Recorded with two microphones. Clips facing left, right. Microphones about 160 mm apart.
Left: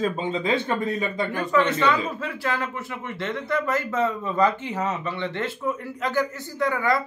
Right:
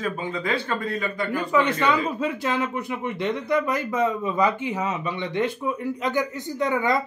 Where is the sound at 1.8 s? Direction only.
15° right (ahead or behind).